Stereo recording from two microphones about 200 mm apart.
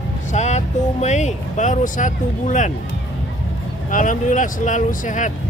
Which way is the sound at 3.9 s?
40° left (ahead or behind).